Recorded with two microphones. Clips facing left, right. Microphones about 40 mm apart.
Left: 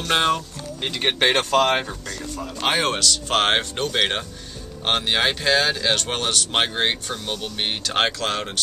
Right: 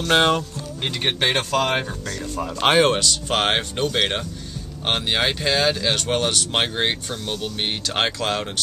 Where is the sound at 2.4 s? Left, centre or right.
Right.